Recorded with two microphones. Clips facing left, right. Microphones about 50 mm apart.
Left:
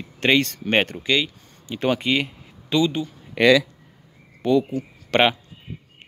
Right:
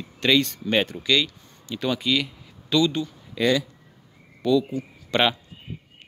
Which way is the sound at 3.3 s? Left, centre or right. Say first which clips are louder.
Left 6 dB; left.